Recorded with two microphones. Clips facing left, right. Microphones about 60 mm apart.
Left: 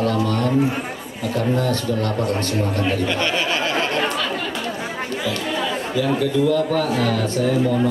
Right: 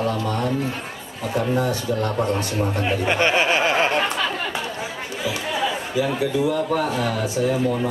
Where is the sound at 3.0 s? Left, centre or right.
Right.